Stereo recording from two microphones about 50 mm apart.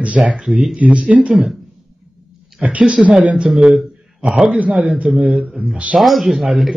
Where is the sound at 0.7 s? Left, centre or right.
Right.